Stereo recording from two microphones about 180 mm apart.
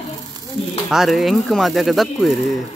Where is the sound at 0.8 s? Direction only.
Centre (ahead or behind).